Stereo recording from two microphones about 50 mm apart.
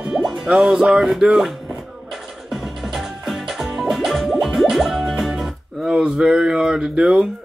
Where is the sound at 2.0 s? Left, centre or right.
Centre.